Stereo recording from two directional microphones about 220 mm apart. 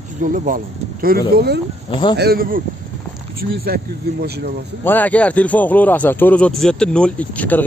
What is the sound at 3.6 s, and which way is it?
Speech, 45° right (ahead or behind).